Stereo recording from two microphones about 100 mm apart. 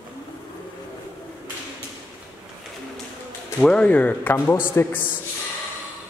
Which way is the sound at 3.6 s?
10° left (ahead or behind).